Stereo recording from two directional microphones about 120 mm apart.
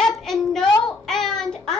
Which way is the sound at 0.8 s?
5° left (ahead or behind).